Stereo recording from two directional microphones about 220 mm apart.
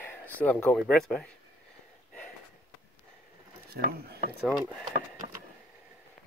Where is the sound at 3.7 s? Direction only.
45° right (ahead or behind).